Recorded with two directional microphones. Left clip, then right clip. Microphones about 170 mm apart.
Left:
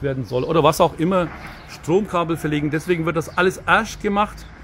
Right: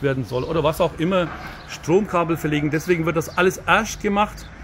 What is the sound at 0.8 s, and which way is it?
Speech, 30° left (ahead or behind).